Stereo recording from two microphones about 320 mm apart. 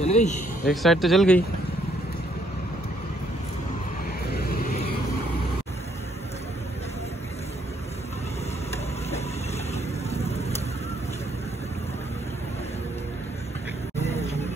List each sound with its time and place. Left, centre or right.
0.0 s a man's voice: left
0.8 s speech: centre
4.3 s vehicle: left
10.0 s vehicle: centre